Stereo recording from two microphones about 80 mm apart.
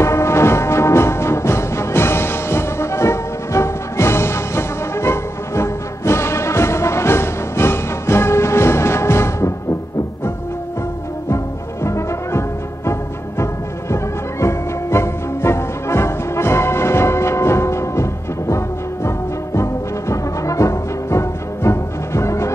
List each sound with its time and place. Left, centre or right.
0.0 s music: left
11.2 s music: left
19.0 s music: left